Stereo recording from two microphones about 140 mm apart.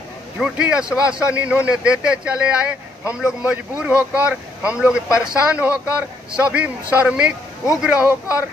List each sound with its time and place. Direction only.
0.4 s speech: 5° right (ahead or behind)